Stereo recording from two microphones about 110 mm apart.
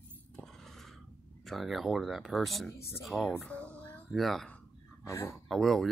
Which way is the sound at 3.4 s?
10° left (ahead or behind).